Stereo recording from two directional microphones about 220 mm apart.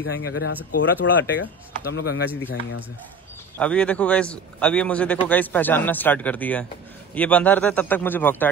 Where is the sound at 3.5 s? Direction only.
5° left (ahead or behind).